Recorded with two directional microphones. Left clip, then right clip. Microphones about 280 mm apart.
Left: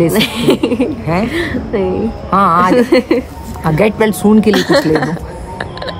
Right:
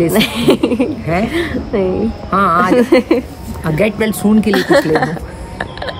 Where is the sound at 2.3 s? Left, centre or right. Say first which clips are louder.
Left 2 dB; centre.